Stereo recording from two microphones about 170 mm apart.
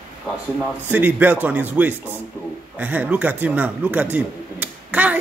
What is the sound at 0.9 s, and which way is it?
Speech, 10° right (ahead or behind).